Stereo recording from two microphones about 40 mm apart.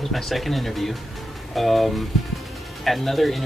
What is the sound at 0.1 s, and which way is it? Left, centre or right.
A man's voice, centre.